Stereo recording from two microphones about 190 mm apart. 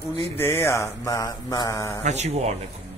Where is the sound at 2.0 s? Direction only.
35° right (ahead or behind).